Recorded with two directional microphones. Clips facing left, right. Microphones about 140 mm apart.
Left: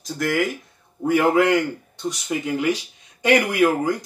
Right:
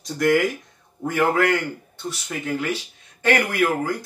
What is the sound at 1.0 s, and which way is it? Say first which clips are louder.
A man's voice: left 3 dB; 10° left (ahead or behind).